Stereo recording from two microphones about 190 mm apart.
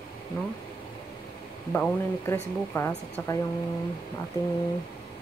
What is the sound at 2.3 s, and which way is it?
Speech, 10° left (ahead or behind).